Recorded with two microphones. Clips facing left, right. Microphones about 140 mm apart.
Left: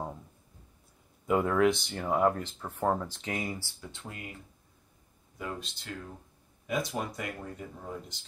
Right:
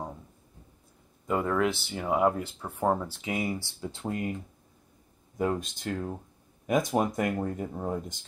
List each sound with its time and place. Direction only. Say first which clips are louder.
1.2 s speech: left 2 dB; centre (ahead or behind)
3.6 s speech: right 10 dB; 30° right (ahead or behind)
5.4 s speech: right 10 dB; 45° right (ahead or behind)